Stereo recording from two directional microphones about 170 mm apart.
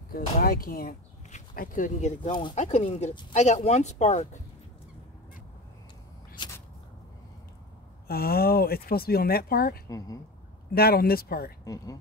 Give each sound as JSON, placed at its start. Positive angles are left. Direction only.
{"t": 0.1, "sound": "speech", "side_deg": 60}
{"t": 8.1, "sound": "speech", "side_deg": 60}
{"t": 9.8, "sound": "speech", "side_deg": 20}
{"t": 10.7, "sound": "speech", "side_deg": 65}
{"t": 11.6, "sound": "speech", "side_deg": 20}